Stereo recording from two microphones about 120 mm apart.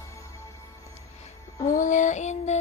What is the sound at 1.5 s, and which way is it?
Music, 25° left (ahead or behind).